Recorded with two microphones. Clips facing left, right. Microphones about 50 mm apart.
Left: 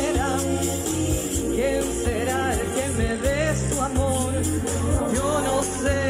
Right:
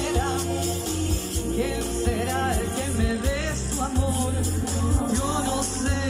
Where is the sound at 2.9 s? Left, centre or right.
Centre.